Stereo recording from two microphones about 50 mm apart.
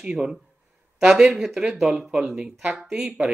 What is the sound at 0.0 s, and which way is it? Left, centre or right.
Speech, right.